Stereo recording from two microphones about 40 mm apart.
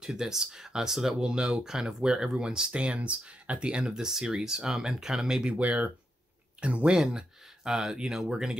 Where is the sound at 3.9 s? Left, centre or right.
Centre.